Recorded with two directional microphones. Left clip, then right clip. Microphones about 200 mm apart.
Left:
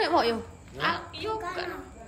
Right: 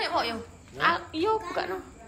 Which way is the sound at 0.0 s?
30° left (ahead or behind).